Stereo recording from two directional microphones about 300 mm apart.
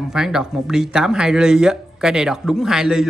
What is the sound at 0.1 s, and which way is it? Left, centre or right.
Speech, centre.